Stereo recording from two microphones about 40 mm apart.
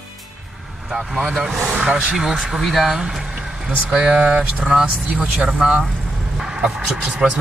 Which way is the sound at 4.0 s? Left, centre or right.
Centre.